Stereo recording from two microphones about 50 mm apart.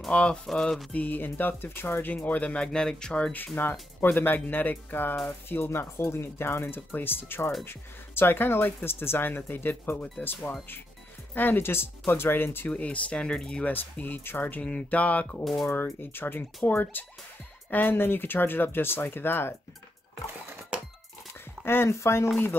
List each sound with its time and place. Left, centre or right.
0.1 s speech: centre
0.5 s a sound: centre
0.9 s speech: left
2.1 s speech: left
4.0 s speech: left
6.9 s speech: left
11.3 s speech: left
12.6 s speech: left
14.0 s speech: left
14.6 s speech: left
15.4 s a sound: centre
15.7 s speech: left
21.8 s speech: left